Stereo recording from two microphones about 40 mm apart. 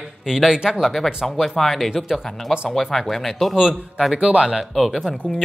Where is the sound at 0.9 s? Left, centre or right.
Centre.